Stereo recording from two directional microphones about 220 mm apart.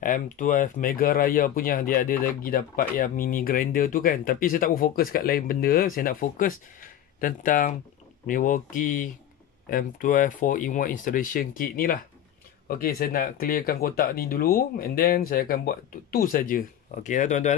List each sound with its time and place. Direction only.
0.0 s speech: 40° left (ahead or behind)